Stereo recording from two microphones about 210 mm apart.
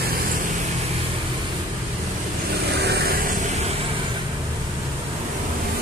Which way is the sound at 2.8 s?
50° right (ahead or behind).